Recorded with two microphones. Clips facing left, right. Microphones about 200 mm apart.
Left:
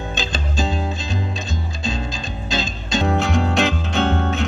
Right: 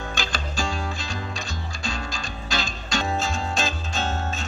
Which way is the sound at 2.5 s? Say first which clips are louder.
Left 5 dB; 20° left (ahead or behind).